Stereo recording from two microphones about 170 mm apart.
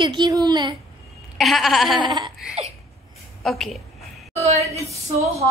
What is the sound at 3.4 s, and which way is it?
Speech, centre (ahead or behind).